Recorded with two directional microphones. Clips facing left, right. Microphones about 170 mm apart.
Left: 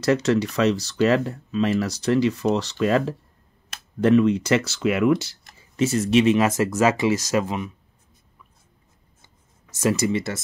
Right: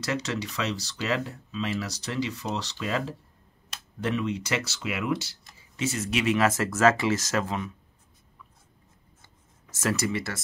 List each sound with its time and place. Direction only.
0.0 s speech: 50° left (ahead or behind)
6.0 s speech: 25° left (ahead or behind)
9.8 s speech: 15° left (ahead or behind)